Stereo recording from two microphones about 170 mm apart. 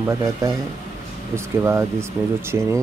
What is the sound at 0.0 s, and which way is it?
Speech, 20° right (ahead or behind).